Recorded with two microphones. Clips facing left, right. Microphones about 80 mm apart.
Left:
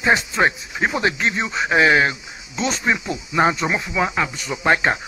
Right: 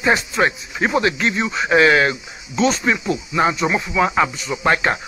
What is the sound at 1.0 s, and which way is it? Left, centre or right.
Speech, left.